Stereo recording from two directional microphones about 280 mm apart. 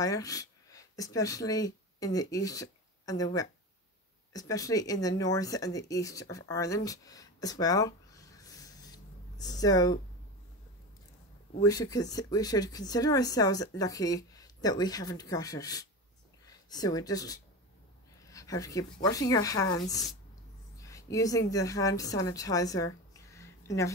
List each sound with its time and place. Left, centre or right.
0.0 s speech: centre
11.6 s a woman's voice: centre